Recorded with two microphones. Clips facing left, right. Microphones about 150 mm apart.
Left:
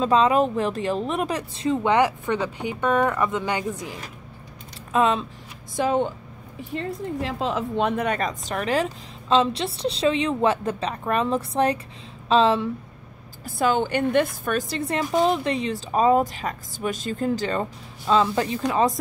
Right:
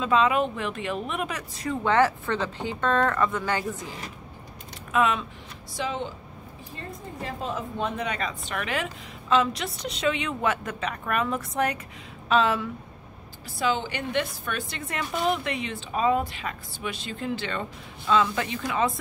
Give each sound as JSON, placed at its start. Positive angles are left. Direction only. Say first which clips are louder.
{"t": 0.0, "sound": "a woman's voice", "louder": "left 4 dB", "side_deg": 35}
{"t": 1.7, "sound": "speech", "louder": "left 2 dB", "side_deg": 15}
{"t": 4.9, "sound": "a woman's voice", "louder": "left 3 dB", "side_deg": 30}
{"t": 5.8, "sound": "a woman's voice", "louder": "left 8 dB", "side_deg": 50}
{"t": 6.7, "sound": "a woman's voice", "louder": "left 11 dB", "side_deg": 80}
{"t": 13.6, "sound": "a woman's voice", "louder": "left 6 dB", "side_deg": 50}